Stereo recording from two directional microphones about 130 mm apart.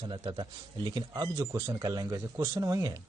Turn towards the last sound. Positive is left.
turn(degrees=-25)  # may be behind; listen again after turning